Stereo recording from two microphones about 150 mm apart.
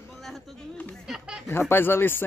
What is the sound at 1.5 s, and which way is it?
Speech, 15° left (ahead or behind).